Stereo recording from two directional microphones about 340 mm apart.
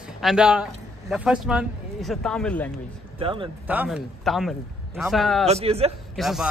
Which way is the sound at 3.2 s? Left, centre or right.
Centre.